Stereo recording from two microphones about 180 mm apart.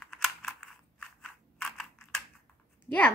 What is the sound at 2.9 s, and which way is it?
Speech, 20° left (ahead or behind).